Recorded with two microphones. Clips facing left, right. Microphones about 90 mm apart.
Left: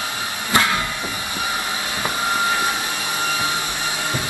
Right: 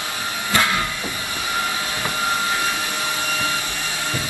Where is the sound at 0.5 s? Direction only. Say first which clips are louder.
Left 2 dB; 20° left (ahead or behind).